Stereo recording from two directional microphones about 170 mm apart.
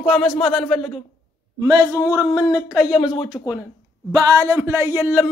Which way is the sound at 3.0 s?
25° left (ahead or behind).